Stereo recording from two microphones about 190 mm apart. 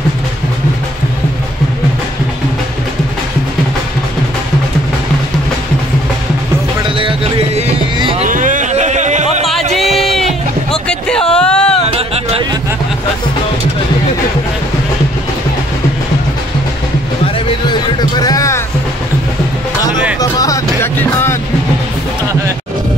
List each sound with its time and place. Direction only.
7.0 s music: 30° right (ahead or behind)
9.8 s a sound: centre (ahead or behind)
17.6 s music: 20° left (ahead or behind)
20.2 s music: 20° left (ahead or behind)